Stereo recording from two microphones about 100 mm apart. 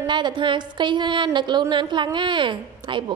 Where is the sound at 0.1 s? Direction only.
50° right (ahead or behind).